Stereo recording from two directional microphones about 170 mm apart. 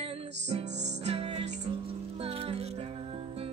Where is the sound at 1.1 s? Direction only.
35° right (ahead or behind).